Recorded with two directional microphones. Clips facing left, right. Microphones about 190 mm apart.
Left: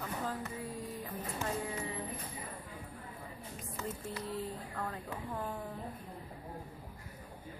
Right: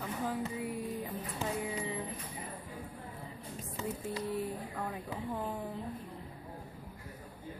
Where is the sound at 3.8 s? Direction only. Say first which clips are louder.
Right 4 dB; 15° right (ahead or behind).